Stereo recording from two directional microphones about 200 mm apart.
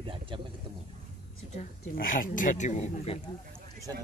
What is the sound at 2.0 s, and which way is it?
Speech, 45° left (ahead or behind).